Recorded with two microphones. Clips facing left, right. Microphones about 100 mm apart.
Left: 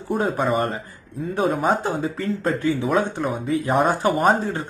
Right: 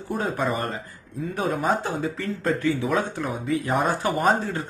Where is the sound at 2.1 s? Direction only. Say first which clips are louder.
Left 2 dB; 35° left (ahead or behind).